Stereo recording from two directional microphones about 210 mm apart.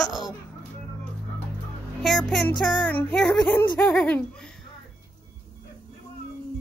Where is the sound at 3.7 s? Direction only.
10° left (ahead or behind).